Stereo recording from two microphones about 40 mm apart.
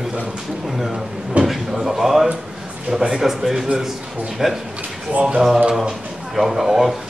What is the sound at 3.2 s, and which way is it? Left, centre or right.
Speech, centre.